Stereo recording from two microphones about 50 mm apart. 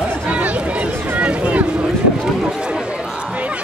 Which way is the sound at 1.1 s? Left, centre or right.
Right.